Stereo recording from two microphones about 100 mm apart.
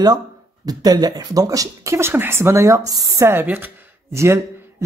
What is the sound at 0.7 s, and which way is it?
A woman's voice, 40° right (ahead or behind).